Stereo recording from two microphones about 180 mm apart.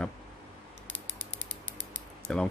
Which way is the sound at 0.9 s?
90° left.